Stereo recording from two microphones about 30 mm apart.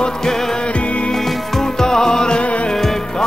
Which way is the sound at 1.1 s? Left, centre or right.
Centre.